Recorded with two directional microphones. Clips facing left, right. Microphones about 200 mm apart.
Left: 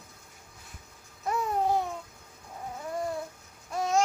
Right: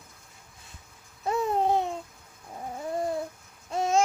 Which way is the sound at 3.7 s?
25° right (ahead or behind).